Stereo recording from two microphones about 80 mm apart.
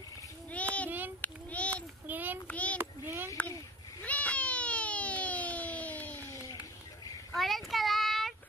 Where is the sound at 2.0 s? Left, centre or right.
Right.